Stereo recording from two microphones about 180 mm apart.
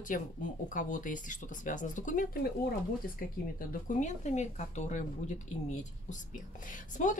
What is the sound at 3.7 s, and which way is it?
Speech, 40° left (ahead or behind).